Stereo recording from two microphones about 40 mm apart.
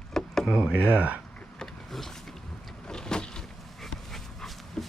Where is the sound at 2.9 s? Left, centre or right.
Centre.